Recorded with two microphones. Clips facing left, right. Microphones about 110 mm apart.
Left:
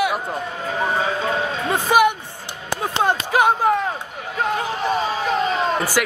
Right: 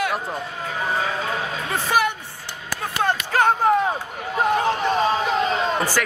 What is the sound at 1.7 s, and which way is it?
Speech, 15° left (ahead or behind).